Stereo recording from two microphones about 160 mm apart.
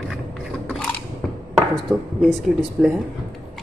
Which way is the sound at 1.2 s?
5° left (ahead or behind).